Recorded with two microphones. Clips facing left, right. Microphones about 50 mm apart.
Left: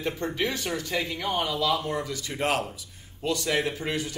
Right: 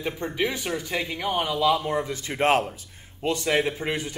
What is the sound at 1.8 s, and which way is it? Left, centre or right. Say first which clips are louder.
Speech: right 3 dB; right.